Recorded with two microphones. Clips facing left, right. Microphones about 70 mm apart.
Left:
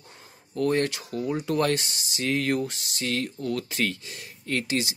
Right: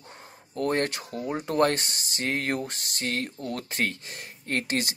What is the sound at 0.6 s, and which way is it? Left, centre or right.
Speech, right.